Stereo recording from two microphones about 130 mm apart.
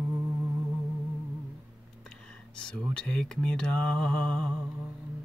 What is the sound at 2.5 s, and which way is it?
Speech, 10° left (ahead or behind).